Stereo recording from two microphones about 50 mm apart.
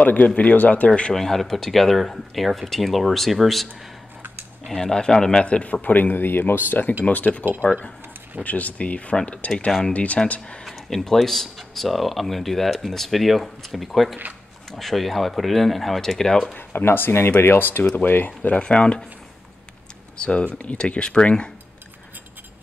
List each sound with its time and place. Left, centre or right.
0.0 s a man's voice: left
1.1 s speech: centre
4.6 s a man's voice: centre; by 7.4 s left
8.5 s speech: left
9.7 s speech: centre
9.9 s speech: left
10.6 s speech: centre
16.5 s speech: left
20.2 s speech: left